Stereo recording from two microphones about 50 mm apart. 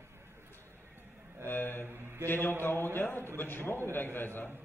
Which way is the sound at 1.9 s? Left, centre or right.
Right.